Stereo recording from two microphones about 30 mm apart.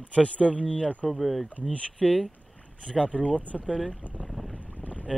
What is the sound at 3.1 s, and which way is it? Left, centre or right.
Speech, left.